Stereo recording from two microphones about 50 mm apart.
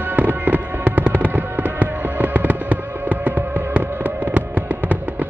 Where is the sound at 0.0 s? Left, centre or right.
Right.